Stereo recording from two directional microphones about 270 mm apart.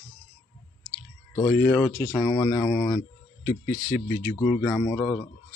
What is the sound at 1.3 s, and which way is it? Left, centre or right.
Speech, centre.